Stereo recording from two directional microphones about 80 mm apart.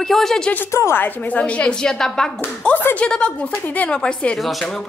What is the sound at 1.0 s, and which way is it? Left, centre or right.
A woman's voice, left.